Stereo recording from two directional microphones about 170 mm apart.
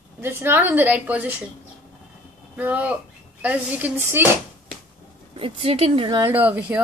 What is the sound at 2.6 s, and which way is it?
A woman's voice, 10° right (ahead or behind).